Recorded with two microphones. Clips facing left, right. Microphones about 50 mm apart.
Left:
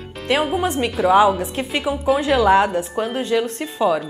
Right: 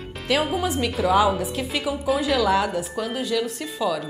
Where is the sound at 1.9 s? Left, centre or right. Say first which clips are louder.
Left 5 dB; left.